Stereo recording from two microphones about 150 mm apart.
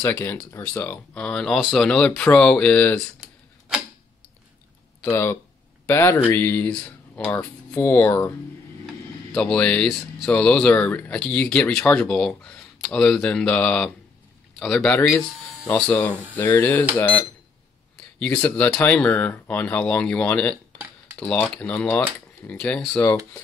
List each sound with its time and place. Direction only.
0.0 s speech: 15° left (ahead or behind)
3.7 s a sound: 5° right (ahead or behind)
5.0 s speech: 15° left (ahead or behind)
18.2 s speech: 10° left (ahead or behind)
20.7 s a sound: 10° right (ahead or behind)
21.2 s speech: 10° left (ahead or behind)